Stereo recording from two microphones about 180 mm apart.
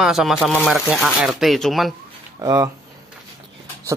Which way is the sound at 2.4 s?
20° right (ahead or behind).